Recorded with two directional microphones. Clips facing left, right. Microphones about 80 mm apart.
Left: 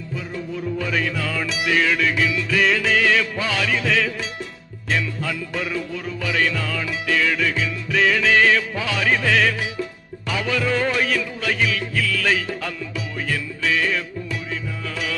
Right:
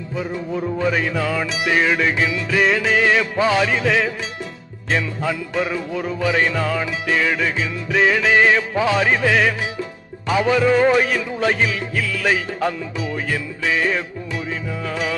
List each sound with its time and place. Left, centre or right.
0.2 s music: right
2.7 s music: centre